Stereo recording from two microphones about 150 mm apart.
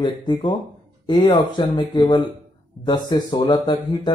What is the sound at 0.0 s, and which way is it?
Speech, 30° left (ahead or behind).